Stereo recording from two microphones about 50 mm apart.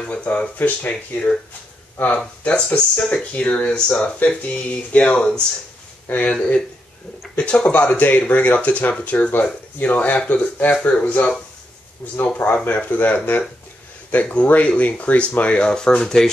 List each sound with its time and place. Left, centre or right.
0.0 s speech: left
2.4 s speech: left
5.1 s speech: centre
6.0 s speech: left
7.3 s speech: left
15.7 s speech: centre